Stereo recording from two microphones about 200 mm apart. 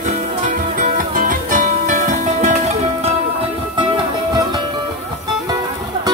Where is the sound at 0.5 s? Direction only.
40° right (ahead or behind).